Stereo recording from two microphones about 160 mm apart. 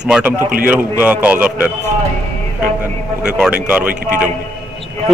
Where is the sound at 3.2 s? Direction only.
5° right (ahead or behind).